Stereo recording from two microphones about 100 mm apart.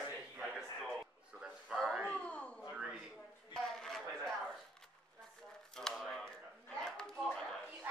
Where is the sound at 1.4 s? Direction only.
5° right (ahead or behind).